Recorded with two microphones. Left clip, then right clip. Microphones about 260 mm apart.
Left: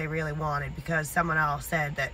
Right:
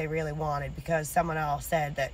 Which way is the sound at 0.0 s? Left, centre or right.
Centre.